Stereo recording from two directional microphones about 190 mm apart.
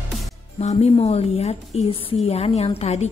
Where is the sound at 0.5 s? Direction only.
35° left (ahead or behind).